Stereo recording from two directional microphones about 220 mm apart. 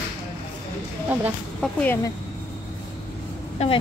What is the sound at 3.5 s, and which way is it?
Speech, 25° left (ahead or behind).